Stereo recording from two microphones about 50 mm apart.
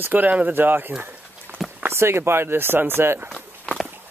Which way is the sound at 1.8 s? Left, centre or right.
Right.